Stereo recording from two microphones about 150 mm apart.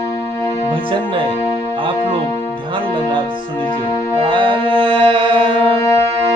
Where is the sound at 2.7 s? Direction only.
35° right (ahead or behind).